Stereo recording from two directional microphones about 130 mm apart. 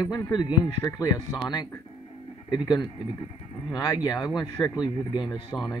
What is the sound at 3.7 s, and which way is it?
Speech, 30° left (ahead or behind).